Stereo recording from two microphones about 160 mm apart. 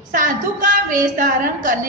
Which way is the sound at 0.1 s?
55° right (ahead or behind).